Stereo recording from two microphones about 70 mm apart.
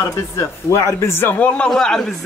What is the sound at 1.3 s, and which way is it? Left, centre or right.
Speech, centre.